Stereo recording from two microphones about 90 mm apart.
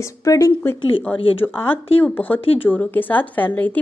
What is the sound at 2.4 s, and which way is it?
Speech, 90° left.